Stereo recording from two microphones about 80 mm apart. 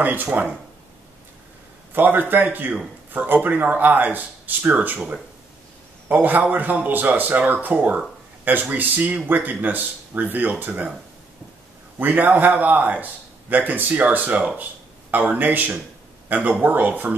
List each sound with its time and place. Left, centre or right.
0.0 s speech: right
2.0 s speech: right
6.2 s speech: right
12.0 s speech: right